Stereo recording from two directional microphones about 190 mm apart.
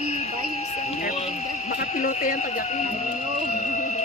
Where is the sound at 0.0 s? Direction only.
35° left (ahead or behind).